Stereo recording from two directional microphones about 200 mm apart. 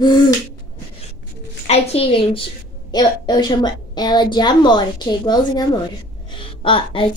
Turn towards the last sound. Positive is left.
turn(degrees=25)  # may be behind; listen again after turning